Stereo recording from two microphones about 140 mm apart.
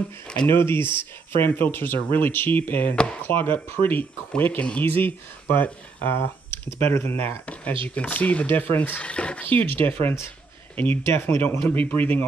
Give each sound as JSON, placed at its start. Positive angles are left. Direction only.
{"t": 0.5, "sound": "speech", "side_deg": 15}
{"t": 9.7, "sound": "speech", "side_deg": -40}
{"t": 10.8, "sound": "speech", "side_deg": 15}